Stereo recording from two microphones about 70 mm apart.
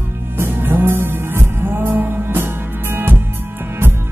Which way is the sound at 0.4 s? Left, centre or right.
Right.